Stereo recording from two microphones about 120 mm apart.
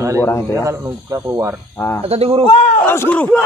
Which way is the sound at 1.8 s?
25° left (ahead or behind).